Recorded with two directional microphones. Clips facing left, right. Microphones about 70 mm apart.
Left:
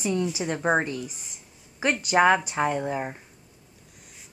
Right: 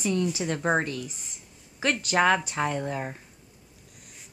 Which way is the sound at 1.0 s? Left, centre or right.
Centre.